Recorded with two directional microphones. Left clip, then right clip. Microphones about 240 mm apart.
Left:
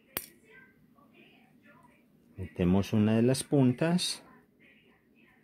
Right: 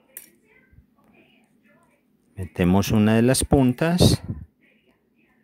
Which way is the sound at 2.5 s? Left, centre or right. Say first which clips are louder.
Right 8 dB; right.